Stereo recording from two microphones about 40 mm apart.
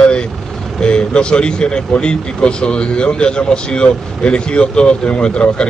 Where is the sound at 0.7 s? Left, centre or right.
Left.